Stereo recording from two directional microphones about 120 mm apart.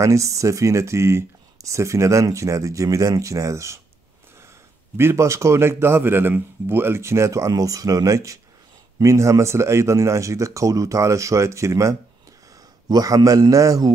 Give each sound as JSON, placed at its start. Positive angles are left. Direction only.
{"t": 0.0, "sound": "speech", "side_deg": -25}
{"t": 4.9, "sound": "a man's voice", "side_deg": -25}